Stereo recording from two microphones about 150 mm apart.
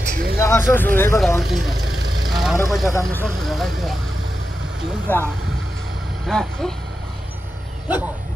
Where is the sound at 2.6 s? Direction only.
Centre (ahead or behind).